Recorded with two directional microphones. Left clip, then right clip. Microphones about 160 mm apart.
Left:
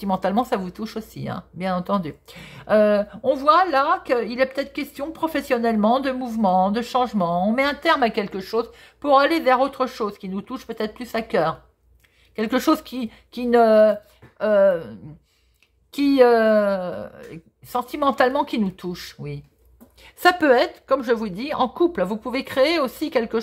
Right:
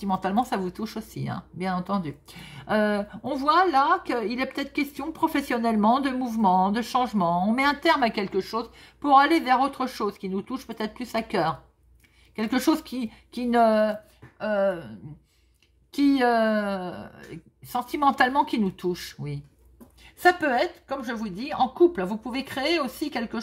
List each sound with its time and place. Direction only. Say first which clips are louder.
0.0 s speech: left 4 dB; 35° left (ahead or behind)
14.4 s speech: left 8 dB; 35° left (ahead or behind)
15.9 s speech: left 6 dB; 30° left (ahead or behind)
20.0 s speech: left 3 dB; 45° left (ahead or behind)